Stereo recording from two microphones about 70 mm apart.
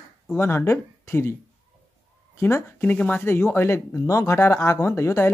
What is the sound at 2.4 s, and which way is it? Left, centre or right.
Speech, left.